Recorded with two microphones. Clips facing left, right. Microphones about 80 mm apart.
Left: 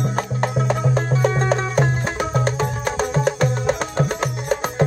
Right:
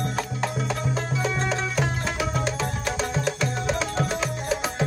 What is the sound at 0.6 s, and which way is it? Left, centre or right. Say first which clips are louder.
Music: left 7 dB; left.